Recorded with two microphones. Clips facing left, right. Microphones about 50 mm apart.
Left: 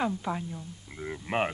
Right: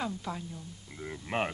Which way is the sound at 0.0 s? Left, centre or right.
Left.